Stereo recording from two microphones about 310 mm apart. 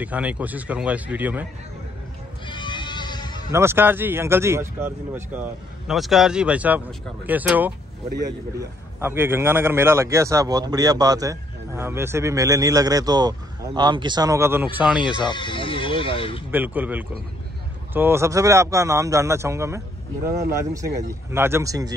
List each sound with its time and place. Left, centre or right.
0.0 s a man's voice: centre
2.4 s bleat: centre
3.5 s a man's voice: centre
15.1 s speech: centre
16.5 s a man's voice: centre
21.1 s a man's voice: centre